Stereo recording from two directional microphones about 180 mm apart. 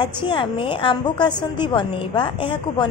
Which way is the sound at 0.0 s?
25° left (ahead or behind).